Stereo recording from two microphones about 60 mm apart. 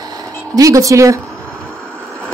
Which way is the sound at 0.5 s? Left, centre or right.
Right.